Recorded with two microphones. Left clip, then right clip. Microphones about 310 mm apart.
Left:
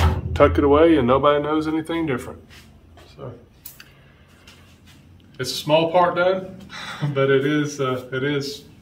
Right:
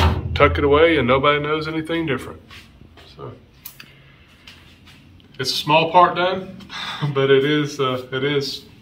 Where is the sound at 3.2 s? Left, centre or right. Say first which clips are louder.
Right 1 dB; centre.